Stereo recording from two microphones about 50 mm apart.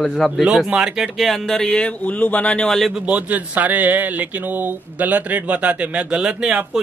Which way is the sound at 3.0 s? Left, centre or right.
Right.